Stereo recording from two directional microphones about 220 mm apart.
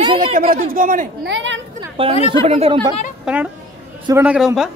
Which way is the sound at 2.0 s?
25° right (ahead or behind).